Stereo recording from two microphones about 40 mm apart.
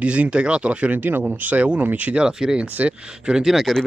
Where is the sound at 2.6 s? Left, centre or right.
Right.